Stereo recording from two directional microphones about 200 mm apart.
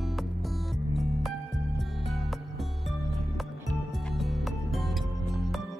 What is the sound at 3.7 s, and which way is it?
Music, centre (ahead or behind).